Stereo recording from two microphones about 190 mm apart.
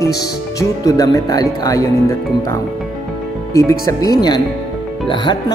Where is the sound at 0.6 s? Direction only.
20° left (ahead or behind).